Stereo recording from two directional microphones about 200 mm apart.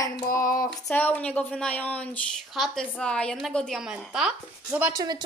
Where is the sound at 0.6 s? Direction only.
10° left (ahead or behind).